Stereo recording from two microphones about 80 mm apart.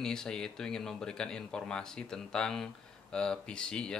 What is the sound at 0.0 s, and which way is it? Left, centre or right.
Speech, centre.